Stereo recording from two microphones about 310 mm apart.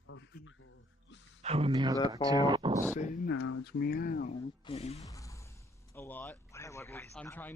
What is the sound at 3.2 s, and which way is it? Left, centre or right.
Speech, left.